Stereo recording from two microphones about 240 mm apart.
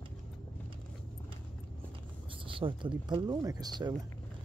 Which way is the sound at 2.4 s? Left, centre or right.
Right.